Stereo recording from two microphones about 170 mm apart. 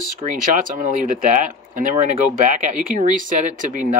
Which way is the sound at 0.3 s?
50° right (ahead or behind).